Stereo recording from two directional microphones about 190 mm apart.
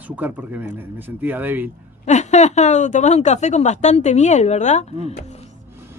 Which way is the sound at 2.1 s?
40° left (ahead or behind).